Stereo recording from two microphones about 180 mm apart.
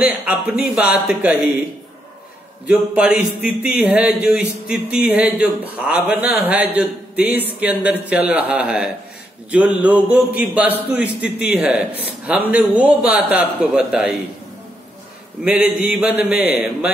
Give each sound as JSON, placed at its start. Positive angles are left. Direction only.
{"t": 0.0, "sound": "a man's voice", "side_deg": -5}
{"t": 2.6, "sound": "a man's voice", "side_deg": -5}
{"t": 15.4, "sound": "a man's voice", "side_deg": -5}